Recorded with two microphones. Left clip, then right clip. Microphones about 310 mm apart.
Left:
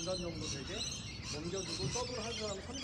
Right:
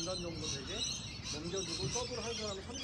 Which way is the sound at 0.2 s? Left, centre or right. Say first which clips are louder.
Right 1 dB; left.